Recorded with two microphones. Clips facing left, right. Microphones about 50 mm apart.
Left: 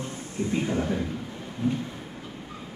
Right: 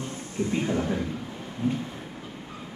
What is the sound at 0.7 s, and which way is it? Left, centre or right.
Speech, centre.